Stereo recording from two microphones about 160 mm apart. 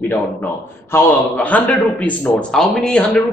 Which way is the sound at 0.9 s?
10° left (ahead or behind).